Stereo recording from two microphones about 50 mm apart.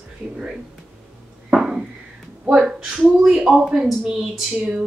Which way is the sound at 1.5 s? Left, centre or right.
Centre.